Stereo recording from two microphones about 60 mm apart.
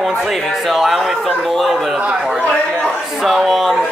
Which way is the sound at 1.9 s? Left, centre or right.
Centre.